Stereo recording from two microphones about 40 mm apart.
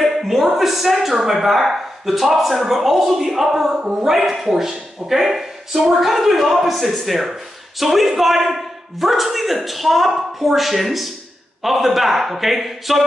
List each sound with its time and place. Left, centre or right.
0.0 s speech: centre